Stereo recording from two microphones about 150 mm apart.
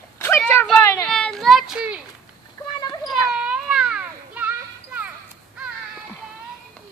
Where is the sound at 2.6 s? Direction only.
25° left (ahead or behind).